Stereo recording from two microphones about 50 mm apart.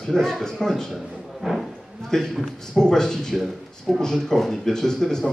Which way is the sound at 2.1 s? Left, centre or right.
Centre.